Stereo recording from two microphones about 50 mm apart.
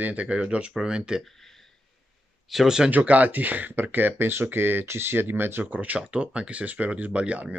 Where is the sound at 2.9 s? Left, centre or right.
Right.